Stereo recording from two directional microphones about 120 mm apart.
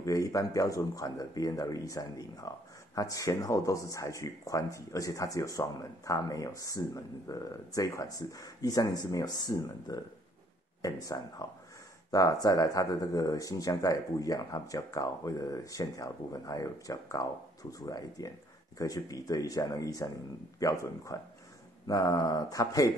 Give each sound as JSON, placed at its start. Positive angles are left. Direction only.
{"t": 0.0, "sound": "speech", "side_deg": 30}